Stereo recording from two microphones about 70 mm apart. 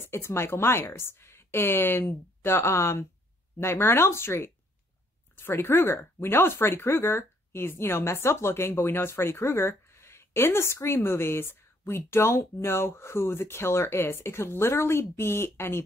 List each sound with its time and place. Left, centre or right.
0.0 s speech: left